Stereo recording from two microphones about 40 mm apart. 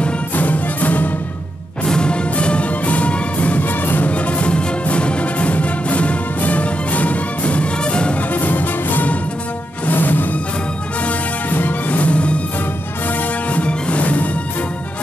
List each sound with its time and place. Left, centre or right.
0.4 s music: left
1.9 s music: left
4.1 s music: left
8.3 s music: left
11.5 s music: left
13.5 s music: left